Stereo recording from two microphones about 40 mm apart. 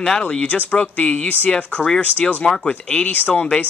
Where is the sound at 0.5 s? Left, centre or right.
Left.